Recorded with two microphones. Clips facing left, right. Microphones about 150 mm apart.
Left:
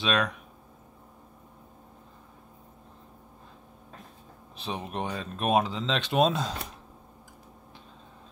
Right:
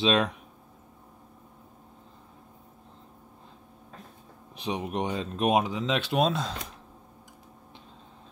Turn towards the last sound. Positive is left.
turn(degrees=0)  # may be behind; listen again after turning